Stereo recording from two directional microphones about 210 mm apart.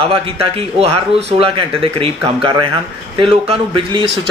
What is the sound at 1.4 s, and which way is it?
Speech, 25° right (ahead or behind).